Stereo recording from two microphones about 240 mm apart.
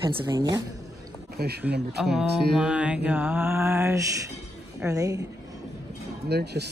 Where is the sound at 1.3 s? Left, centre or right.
Right.